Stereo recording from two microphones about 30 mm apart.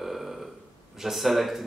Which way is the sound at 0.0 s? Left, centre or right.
Centre.